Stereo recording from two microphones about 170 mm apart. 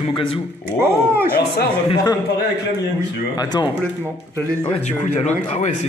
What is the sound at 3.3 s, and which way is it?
Speech, 25° left (ahead or behind).